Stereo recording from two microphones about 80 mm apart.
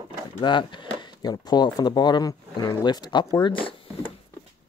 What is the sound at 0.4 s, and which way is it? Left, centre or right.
Speech, left.